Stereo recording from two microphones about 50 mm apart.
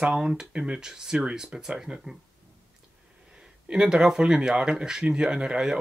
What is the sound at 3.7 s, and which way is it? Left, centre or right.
Speech, centre.